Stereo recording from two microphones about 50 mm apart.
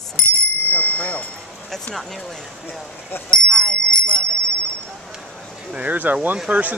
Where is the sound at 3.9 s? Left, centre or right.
Left.